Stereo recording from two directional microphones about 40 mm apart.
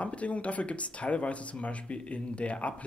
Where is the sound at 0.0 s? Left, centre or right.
Left.